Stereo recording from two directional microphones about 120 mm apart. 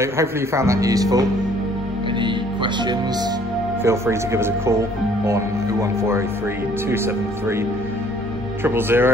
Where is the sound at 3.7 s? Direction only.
20° right (ahead or behind).